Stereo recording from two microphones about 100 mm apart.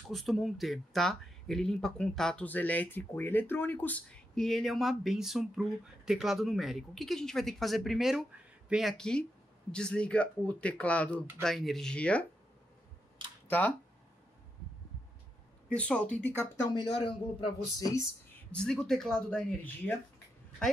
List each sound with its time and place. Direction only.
0.1 s speech: centre (ahead or behind)
11.4 s speech: centre (ahead or behind)
13.5 s speech: 15° left (ahead or behind)
15.7 s speech: 10° left (ahead or behind)
16.7 s speech: 60° left (ahead or behind)
17.7 s speech: 35° left (ahead or behind)
18.7 s speech: 5° left (ahead or behind)
19.6 s speech: 15° left (ahead or behind)